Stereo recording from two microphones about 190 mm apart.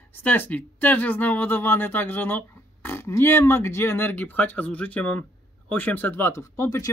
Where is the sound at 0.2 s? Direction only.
10° left (ahead or behind).